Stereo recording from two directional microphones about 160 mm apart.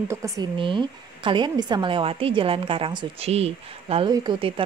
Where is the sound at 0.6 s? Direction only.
30° right (ahead or behind).